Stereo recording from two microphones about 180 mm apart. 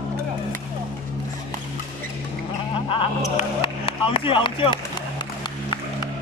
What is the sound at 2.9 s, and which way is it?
Music, 30° left (ahead or behind).